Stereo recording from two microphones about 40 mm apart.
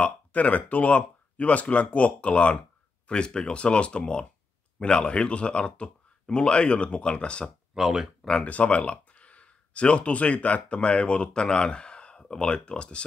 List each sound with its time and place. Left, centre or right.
0.0 s speech: left
7.7 s speech: centre
8.5 s speech: left